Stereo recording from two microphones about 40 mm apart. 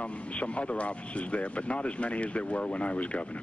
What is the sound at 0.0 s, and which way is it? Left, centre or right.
A man's voice, left.